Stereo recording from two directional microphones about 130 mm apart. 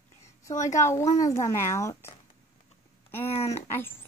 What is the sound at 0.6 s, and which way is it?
Speech, 20° left (ahead or behind).